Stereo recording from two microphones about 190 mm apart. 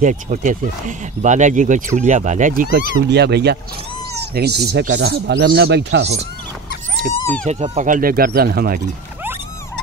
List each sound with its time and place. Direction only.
0.0 s speech: 40° right (ahead or behind); by 6.1 s 65° right (ahead or behind)
7.4 s speech: 35° right (ahead or behind); by 8.8 s 50° right (ahead or behind)